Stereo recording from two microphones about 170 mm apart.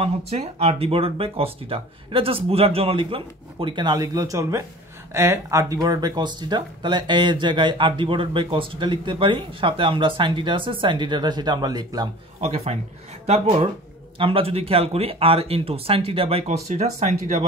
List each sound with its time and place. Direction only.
0.0 s speech: 35° right (ahead or behind)
12.4 s speech: 40° right (ahead or behind)